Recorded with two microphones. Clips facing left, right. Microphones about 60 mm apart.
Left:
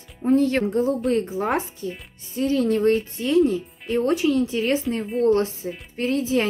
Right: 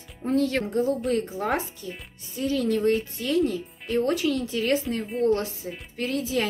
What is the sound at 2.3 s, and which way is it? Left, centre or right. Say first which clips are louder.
Speech: left 4 dB; left.